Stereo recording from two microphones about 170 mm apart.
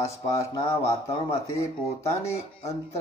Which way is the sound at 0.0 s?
20° left (ahead or behind).